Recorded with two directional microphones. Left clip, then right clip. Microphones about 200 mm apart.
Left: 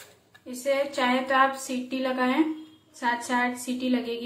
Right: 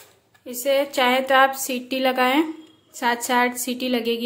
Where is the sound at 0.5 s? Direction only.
55° right (ahead or behind).